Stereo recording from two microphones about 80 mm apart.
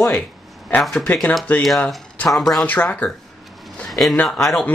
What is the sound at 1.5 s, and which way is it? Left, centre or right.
Speech, left.